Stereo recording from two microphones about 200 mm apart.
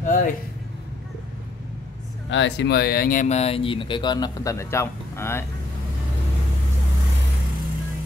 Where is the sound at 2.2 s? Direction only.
65° left (ahead or behind); by 5.4 s 15° left (ahead or behind).